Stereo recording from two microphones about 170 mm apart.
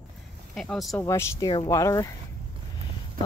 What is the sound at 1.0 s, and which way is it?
Speech, 15° left (ahead or behind).